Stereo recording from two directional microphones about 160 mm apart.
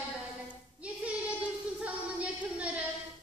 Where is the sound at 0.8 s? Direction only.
10° right (ahead or behind).